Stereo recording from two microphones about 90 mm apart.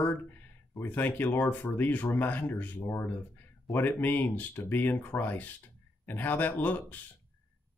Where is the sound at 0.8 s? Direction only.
20° left (ahead or behind).